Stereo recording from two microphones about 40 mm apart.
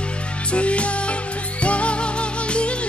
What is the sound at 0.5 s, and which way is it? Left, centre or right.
Music, left.